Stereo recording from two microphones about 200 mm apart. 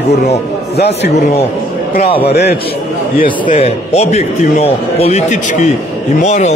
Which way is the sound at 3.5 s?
30° left (ahead or behind).